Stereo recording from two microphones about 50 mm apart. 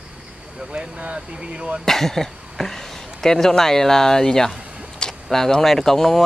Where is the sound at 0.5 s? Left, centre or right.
Centre.